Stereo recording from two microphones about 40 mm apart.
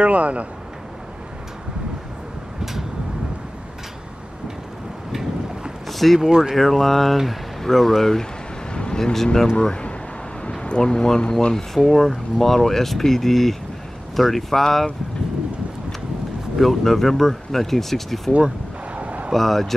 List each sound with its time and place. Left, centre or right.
0.0 s speech: right
5.9 s a sound: centre
6.1 s speech: centre
6.5 s speech: centre
9.6 s speech: left
11.5 s speech: centre
16.5 s speech: centre
18.9 s a sound: right
19.3 s speech: centre